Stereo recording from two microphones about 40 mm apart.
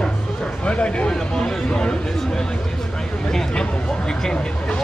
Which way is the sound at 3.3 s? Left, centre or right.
Centre.